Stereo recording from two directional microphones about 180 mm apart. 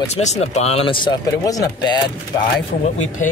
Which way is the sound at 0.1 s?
40° left (ahead or behind).